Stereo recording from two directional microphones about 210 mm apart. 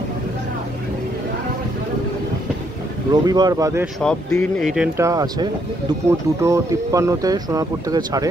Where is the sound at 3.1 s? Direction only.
20° right (ahead or behind).